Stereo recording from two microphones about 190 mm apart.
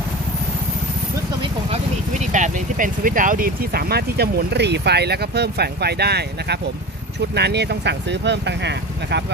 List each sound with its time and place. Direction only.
1.4 s speech: 35° right (ahead or behind); by 9.2 s 65° right (ahead or behind)